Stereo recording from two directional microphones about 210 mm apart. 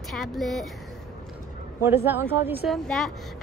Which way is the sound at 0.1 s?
Centre (ahead or behind).